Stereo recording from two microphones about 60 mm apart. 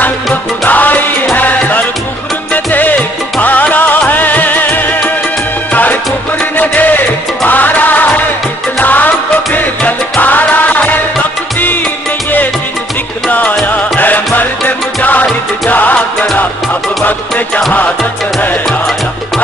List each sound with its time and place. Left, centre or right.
0.0 s music: left
13.3 s music: left